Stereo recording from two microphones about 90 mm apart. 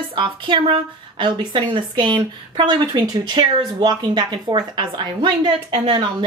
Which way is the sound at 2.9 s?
45° right (ahead or behind).